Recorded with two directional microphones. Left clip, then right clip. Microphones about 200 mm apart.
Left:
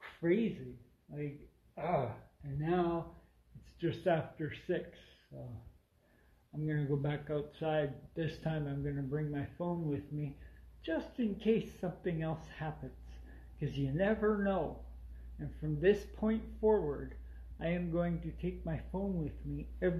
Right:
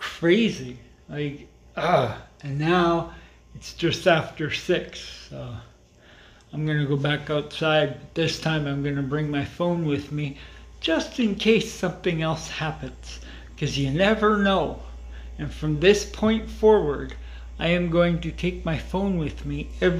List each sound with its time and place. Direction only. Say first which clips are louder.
0.0 s a sound: right 13 dB; 5° right (ahead or behind)
1.8 s speech: right 14 dB; 15° right (ahead or behind)
3.7 s speech: right 13 dB; 10° right (ahead or behind)
6.6 s speech: right 12 dB; 5° right (ahead or behind)